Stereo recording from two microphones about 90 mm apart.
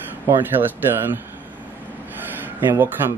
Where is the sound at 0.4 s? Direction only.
20° right (ahead or behind).